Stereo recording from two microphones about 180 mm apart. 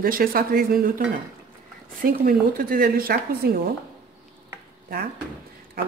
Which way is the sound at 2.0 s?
50° right (ahead or behind).